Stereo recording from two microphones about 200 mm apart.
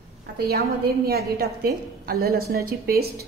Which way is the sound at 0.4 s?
50° right (ahead or behind).